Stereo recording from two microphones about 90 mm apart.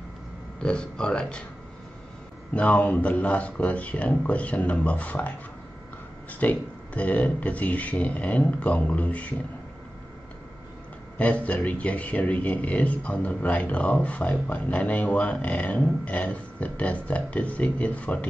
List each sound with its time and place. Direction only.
0.6 s speech: 10° left (ahead or behind)
2.5 s speech: 15° left (ahead or behind)
6.4 s speech: 15° left (ahead or behind)
11.1 s speech: 15° left (ahead or behind)